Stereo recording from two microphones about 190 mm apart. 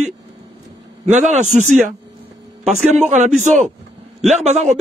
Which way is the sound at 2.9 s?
40° right (ahead or behind).